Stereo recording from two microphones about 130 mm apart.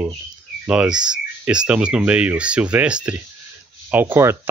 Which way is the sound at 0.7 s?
5° right (ahead or behind).